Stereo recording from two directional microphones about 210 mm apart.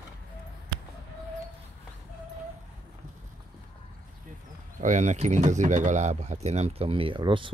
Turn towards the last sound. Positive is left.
turn(degrees=-25)  # may be behind; listen again after turning